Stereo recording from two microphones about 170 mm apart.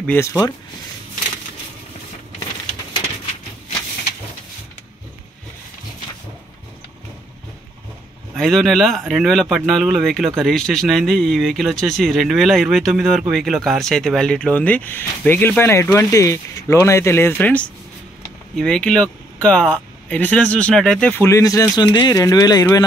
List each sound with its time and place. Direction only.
0.0 s speech: 15° left (ahead or behind)
8.4 s speech: centre (ahead or behind)
21.3 s speech: 20° left (ahead or behind)